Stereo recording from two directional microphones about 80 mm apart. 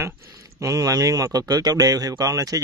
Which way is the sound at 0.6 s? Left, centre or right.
Right.